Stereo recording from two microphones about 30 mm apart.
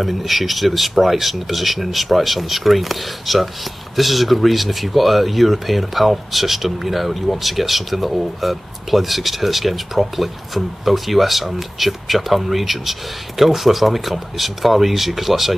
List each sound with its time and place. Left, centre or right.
0.0 s speech: centre